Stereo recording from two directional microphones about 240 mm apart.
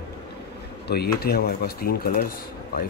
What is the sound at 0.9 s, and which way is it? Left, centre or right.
Speech, left.